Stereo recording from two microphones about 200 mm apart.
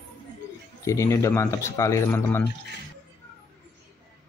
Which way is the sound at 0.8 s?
15° left (ahead or behind).